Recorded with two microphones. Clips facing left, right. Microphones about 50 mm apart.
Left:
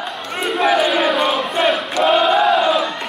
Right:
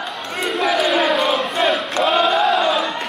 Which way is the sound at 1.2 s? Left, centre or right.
Centre.